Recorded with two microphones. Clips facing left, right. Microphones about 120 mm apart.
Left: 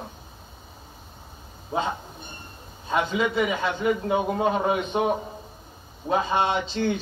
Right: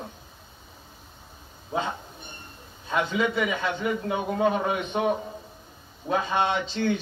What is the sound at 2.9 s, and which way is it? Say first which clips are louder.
Speech: left 1 dB; 25° left (ahead or behind).